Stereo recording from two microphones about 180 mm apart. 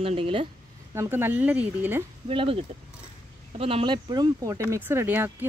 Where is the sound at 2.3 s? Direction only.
30° right (ahead or behind).